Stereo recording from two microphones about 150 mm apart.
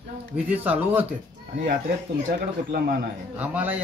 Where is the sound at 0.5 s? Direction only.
10° right (ahead or behind).